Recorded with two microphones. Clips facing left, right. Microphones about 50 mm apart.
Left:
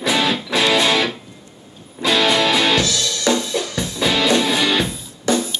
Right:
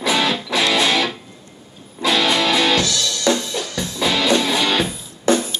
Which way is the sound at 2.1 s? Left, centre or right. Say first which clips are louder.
Left 1 dB; left.